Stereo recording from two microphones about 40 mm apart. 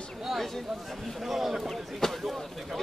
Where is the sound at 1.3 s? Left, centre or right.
Centre.